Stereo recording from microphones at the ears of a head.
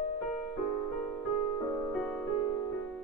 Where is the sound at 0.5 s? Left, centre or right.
Right.